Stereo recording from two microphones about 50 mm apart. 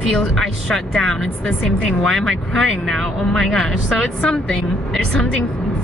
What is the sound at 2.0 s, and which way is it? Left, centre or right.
Speech, centre.